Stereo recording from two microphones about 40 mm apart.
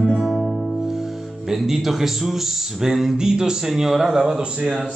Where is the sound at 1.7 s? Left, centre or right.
Centre.